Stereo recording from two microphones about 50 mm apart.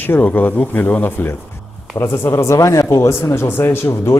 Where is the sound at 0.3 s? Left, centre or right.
Left.